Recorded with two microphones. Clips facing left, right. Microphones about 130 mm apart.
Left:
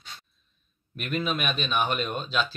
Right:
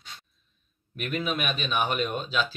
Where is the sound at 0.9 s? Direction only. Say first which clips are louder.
Left 1 dB; 5° right (ahead or behind).